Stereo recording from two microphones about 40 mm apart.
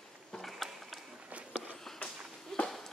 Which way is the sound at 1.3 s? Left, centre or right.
Right.